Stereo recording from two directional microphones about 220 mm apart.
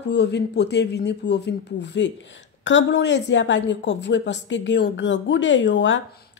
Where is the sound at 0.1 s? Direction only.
50° left (ahead or behind).